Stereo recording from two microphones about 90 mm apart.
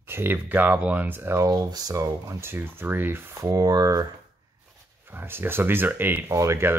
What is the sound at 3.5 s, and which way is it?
Speech, 45° right (ahead or behind).